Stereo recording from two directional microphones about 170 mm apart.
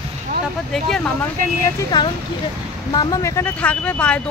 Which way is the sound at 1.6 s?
20° left (ahead or behind).